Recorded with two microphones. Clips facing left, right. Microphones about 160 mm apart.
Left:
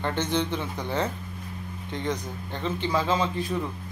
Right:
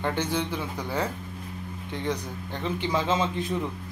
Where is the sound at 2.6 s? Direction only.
15° right (ahead or behind).